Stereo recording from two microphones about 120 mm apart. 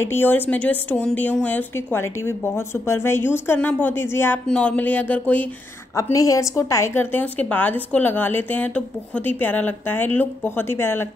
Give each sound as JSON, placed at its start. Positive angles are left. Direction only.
{"t": 0.0, "sound": "a woman's voice", "side_deg": 20}
{"t": 5.9, "sound": "a woman's voice", "side_deg": 25}